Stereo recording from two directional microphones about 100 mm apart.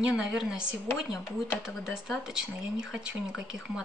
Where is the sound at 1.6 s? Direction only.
5° right (ahead or behind).